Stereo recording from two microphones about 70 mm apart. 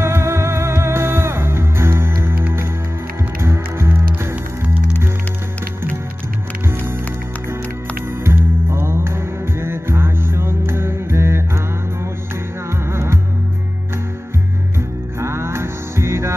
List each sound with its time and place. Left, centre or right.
0.0 s music: right
3.3 s music: right
8.2 s music: right
15.1 s music: right